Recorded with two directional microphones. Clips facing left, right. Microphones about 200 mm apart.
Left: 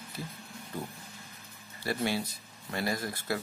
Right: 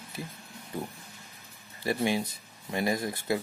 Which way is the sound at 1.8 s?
15° right (ahead or behind).